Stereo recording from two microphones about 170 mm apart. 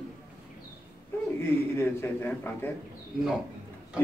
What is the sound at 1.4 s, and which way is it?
A man's voice, 15° left (ahead or behind).